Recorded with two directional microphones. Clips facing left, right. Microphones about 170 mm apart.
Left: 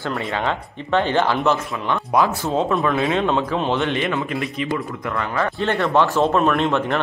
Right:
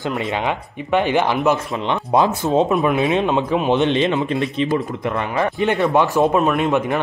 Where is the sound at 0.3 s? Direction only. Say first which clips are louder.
Right 1 dB; 15° right (ahead or behind).